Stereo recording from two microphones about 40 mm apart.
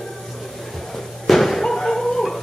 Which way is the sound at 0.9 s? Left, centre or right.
Centre.